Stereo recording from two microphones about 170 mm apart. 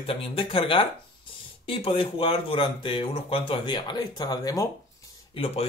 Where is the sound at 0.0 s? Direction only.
30° left (ahead or behind).